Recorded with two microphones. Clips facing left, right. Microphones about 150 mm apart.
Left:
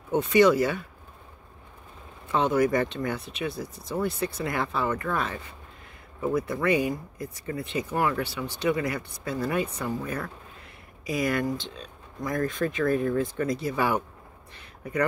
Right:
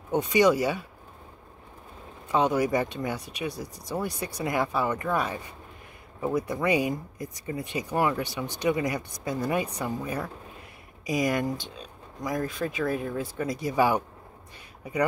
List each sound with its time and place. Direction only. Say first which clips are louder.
0.1 s speech: left 2 dB; 15° right (ahead or behind)
2.2 s speech: left 1 dB; 15° right (ahead or behind)